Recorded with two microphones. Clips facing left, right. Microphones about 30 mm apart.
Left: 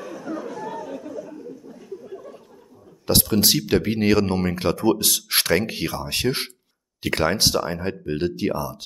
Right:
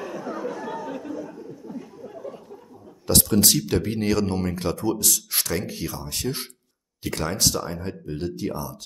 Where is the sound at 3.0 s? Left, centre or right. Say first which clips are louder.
Left 1 dB; left.